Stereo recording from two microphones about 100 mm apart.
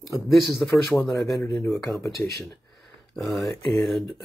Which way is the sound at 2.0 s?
30° left (ahead or behind).